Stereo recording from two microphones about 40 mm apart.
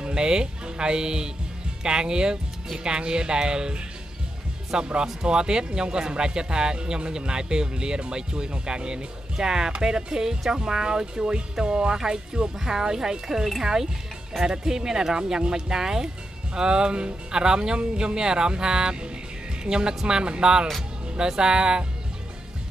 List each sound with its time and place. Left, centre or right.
0.0 s speech: centre